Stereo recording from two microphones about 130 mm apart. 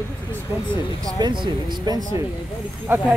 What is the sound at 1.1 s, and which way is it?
Speech, 35° right (ahead or behind).